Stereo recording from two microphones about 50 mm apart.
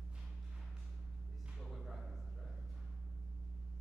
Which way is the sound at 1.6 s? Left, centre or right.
Centre.